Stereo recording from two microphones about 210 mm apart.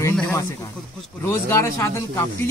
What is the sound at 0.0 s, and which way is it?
Snake, 10° left (ahead or behind).